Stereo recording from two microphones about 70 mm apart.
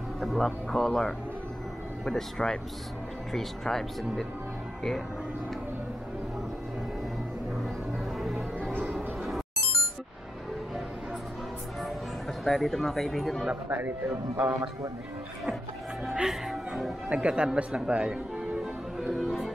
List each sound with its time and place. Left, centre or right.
0.2 s speech: centre
8.2 s music: centre
12.4 s speech: centre
13.7 s a man's voice: right
16.1 s speech: centre
17.1 s speech: centre
18.6 s music: centre